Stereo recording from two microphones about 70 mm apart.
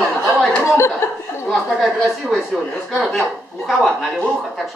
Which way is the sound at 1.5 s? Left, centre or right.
Centre.